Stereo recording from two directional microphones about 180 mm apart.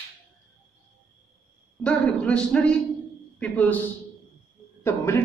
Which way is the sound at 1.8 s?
5° left (ahead or behind).